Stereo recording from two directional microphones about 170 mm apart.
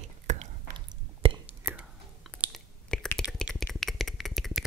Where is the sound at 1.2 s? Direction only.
30° right (ahead or behind).